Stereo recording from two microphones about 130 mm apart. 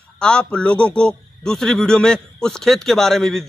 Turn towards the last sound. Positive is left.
turn(degrees=5)  # may be behind; listen again after turning